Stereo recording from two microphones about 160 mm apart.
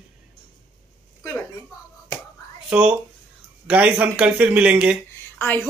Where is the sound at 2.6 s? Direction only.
5° right (ahead or behind).